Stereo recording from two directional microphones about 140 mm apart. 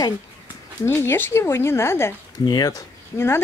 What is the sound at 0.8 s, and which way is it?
Speech, 15° left (ahead or behind).